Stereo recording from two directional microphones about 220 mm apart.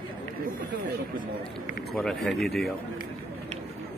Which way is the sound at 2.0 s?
Centre (ahead or behind).